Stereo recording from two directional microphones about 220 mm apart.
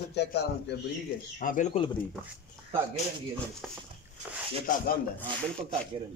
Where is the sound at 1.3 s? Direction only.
35° left (ahead or behind).